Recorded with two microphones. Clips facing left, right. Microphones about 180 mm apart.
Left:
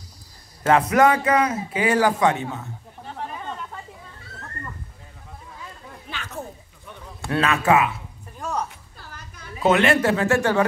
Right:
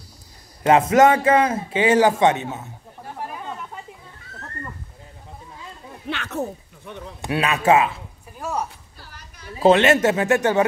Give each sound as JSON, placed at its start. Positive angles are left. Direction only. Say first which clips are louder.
{"t": 0.7, "sound": "a man's voice", "louder": "right 3 dB", "side_deg": -25}
{"t": 3.0, "sound": "chatter", "louder": "right 1 dB", "side_deg": -5}
{"t": 6.0, "sound": "speech", "louder": "right 7 dB", "side_deg": -70}
{"t": 7.2, "sound": "a man's voice", "louder": "left 1 dB", "side_deg": -15}
{"t": 8.4, "sound": "a sound", "louder": "right 1 dB", "side_deg": -10}
{"t": 8.9, "sound": "a sound", "louder": "left 2 dB", "side_deg": 50}
{"t": 9.6, "sound": "a man's voice", "louder": "right 3 dB", "side_deg": -30}